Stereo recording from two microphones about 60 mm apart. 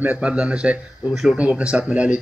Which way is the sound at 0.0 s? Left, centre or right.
Right.